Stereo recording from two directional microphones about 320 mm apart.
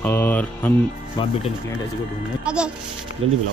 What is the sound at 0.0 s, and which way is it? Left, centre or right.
A man's voice, centre.